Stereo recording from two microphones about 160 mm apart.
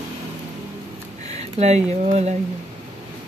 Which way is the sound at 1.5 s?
45° right (ahead or behind).